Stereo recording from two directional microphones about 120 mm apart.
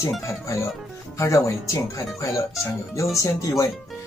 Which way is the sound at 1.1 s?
25° left (ahead or behind).